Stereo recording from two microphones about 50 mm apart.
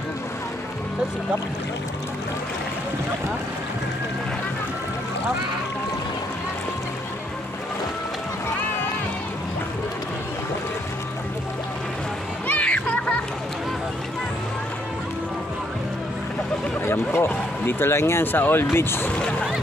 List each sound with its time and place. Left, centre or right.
12.4 s music: left
16.8 s speech: left
18.2 s speech: left